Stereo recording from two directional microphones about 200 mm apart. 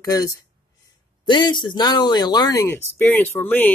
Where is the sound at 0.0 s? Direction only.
15° left (ahead or behind).